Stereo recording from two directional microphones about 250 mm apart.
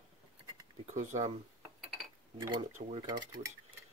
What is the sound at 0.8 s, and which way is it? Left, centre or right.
Speech, right.